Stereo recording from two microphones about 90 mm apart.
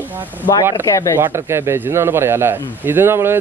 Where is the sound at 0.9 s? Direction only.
35° left (ahead or behind).